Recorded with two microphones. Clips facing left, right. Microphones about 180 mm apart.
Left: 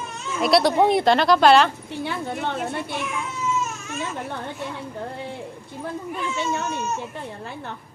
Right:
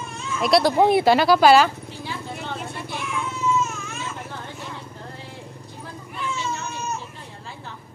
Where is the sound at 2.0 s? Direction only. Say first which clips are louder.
Left 5 dB; 60° left (ahead or behind).